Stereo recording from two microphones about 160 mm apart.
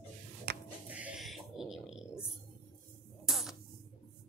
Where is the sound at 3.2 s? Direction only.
Centre (ahead or behind).